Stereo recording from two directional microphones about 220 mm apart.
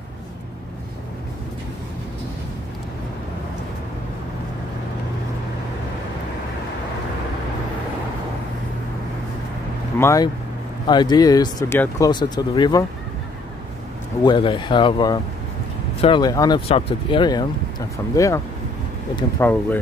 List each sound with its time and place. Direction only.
9.9 s speech: 15° left (ahead or behind)
14.2 s speech: 20° left (ahead or behind)